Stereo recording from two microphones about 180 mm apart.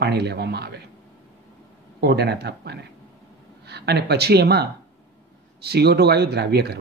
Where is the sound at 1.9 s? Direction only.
65° right (ahead or behind).